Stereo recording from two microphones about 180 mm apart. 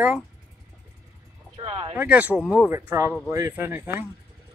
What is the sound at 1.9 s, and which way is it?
Speech, 5° right (ahead or behind).